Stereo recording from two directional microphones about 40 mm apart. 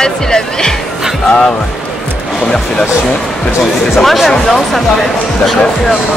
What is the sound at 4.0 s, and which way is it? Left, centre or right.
Speech, centre.